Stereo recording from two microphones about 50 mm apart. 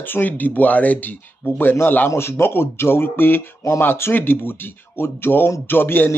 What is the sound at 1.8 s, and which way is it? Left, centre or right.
Speech, left.